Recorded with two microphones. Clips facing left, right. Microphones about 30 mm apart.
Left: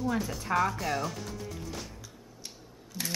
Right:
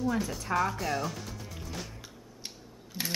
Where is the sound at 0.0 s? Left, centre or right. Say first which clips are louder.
Even; centre.